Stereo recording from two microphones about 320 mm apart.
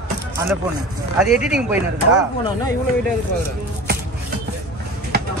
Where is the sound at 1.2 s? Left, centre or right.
Centre.